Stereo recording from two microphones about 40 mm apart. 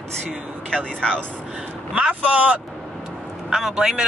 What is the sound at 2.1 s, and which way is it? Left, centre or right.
Speech, right.